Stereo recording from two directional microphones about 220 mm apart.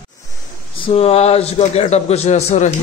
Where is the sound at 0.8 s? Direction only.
25° left (ahead or behind).